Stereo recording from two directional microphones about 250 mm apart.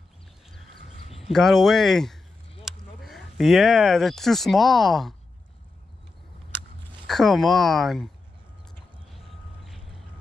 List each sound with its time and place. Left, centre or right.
1.0 s a sound: left
1.3 s speech: centre
7.1 s speech: centre